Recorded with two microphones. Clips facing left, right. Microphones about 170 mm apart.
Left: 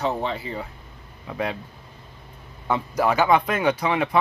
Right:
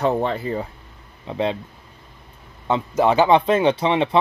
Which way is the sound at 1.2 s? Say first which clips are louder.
Right 5 dB; 25° right (ahead or behind).